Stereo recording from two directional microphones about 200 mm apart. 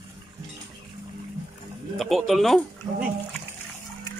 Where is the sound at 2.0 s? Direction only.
Centre (ahead or behind).